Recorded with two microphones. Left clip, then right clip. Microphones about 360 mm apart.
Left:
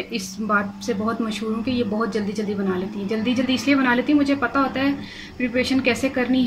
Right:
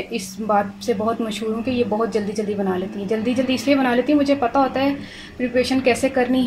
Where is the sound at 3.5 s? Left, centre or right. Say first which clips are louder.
Right 1 dB; centre.